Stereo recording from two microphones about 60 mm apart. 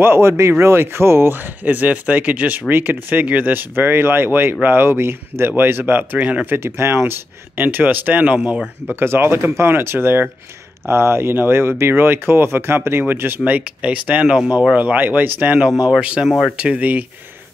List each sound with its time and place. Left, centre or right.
0.0 s speech: right
6.1 s speech: right
6.5 s speech: right
7.6 s speech: right
9.0 s speech: right
13.5 s speech: right